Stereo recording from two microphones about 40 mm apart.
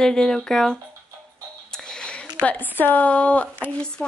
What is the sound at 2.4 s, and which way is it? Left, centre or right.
Speech, left.